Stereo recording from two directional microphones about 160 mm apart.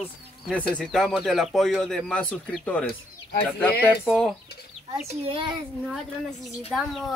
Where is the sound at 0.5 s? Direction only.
5° left (ahead or behind).